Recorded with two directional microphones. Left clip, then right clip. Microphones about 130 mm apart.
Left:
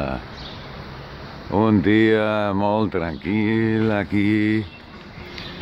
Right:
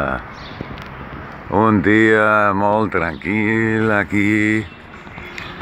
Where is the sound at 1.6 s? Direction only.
25° left (ahead or behind).